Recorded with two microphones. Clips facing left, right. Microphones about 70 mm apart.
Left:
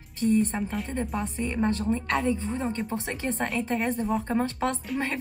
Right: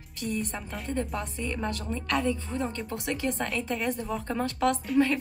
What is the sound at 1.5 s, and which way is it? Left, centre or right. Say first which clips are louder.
A woman's voice: left 7 dB; left.